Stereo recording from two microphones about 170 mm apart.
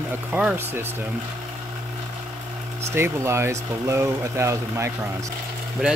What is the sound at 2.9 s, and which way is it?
Speech, 15° right (ahead or behind).